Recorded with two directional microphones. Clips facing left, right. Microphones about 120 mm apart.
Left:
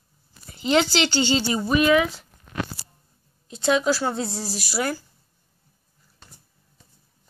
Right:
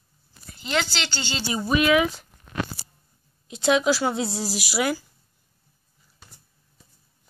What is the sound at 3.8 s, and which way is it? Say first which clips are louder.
Speech: right 1 dB; 5° right (ahead or behind).